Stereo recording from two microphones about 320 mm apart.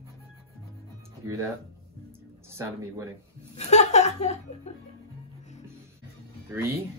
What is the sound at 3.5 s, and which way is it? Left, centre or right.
Speech, left.